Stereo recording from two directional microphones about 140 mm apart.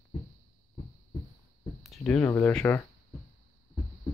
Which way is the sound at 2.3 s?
20° left (ahead or behind).